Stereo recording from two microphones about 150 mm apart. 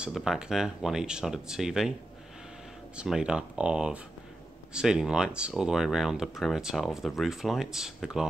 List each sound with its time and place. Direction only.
0.0 s speech: centre (ahead or behind)
3.0 s speech: 5° right (ahead or behind)